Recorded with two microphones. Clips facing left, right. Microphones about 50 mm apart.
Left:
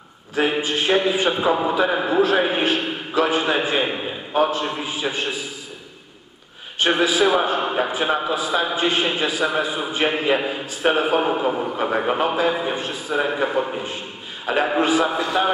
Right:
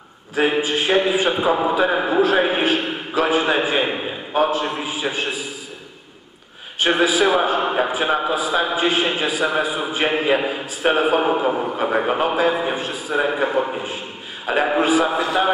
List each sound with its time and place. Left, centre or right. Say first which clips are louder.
0.4 s a man's voice: right 2 dB; centre
7.0 s a man's voice: right 1 dB; centre